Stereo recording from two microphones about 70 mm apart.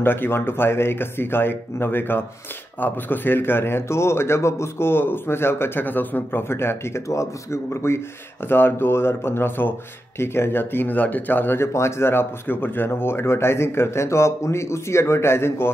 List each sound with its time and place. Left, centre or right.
0.0 s speech: left